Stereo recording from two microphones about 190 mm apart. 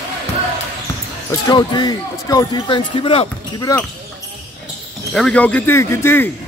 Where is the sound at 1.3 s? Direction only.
20° left (ahead or behind).